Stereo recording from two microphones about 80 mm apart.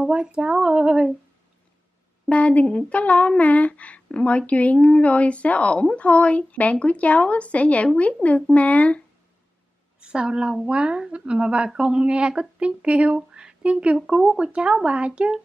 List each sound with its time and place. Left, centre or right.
0.0 s a woman's voice: centre
2.2 s speech: centre
9.9 s a woman's voice: centre